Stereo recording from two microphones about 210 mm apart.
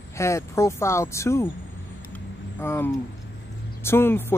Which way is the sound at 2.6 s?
10° left (ahead or behind).